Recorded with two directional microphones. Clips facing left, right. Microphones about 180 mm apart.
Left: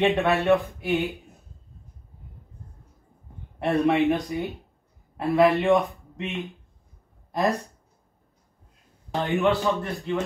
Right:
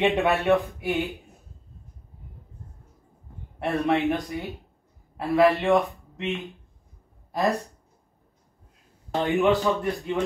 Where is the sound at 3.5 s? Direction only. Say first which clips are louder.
Left 3 dB; centre (ahead or behind).